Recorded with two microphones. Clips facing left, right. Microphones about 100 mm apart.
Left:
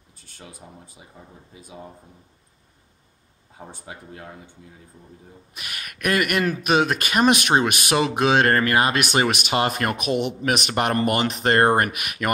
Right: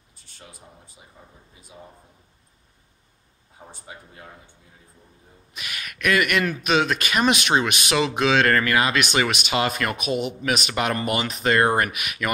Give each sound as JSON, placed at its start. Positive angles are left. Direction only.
{"t": 3.8, "sound": "speech", "side_deg": 60}
{"t": 5.5, "sound": "speech", "side_deg": 45}